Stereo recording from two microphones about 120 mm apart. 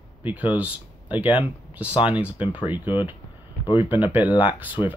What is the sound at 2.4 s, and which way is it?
Speech, 45° left (ahead or behind).